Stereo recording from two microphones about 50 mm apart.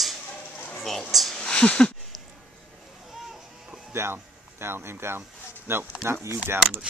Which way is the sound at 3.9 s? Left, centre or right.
Right.